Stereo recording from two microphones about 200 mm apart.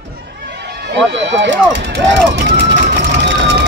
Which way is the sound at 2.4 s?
60° right (ahead or behind).